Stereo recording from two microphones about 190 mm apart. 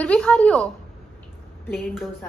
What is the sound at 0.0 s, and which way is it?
Speech, 5° left (ahead or behind).